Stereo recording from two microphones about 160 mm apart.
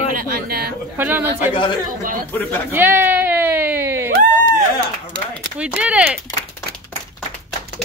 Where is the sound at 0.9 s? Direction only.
10° right (ahead or behind).